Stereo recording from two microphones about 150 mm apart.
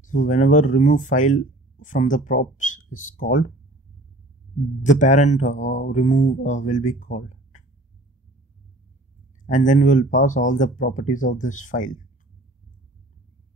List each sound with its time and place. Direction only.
0.0 s speech: 55° left (ahead or behind)
4.8 s speech: 55° left (ahead or behind)
9.5 s speech: 55° left (ahead or behind)